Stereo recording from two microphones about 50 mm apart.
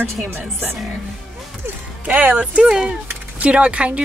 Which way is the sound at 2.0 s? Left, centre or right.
Right.